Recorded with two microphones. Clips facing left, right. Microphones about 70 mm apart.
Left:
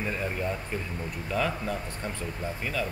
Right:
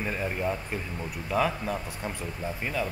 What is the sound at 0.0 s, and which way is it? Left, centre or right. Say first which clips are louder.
Speech: right 1 dB; centre.